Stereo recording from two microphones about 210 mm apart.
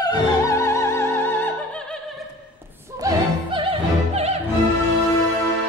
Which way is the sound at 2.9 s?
20° right (ahead or behind).